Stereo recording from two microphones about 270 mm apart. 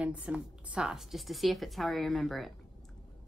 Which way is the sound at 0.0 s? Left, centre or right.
Centre.